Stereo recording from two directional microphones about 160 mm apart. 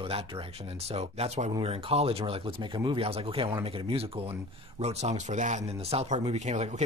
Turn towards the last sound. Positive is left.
turn(degrees=-45)  # may be behind; listen again after turning